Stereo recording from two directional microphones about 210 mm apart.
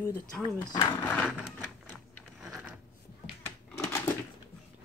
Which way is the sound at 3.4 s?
10° left (ahead or behind).